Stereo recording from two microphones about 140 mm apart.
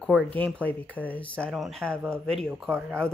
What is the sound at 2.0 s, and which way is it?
Speech, 15° right (ahead or behind).